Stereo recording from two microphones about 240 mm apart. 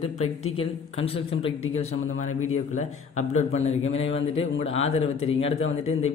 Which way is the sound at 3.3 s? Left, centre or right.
Left.